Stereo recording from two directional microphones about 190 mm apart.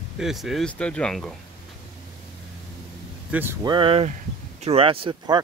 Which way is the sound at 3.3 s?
10° right (ahead or behind).